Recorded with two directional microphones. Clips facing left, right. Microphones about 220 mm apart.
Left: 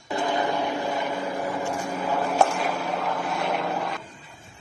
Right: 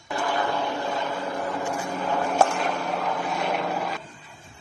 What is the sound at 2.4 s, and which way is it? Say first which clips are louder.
Vehicle: even; centre (ahead or behind).